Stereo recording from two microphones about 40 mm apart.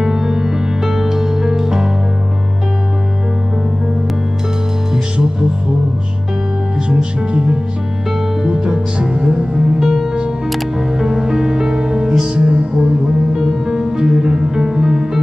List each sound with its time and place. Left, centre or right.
0.0 s music: centre
6.9 s music: right
9.8 s music: centre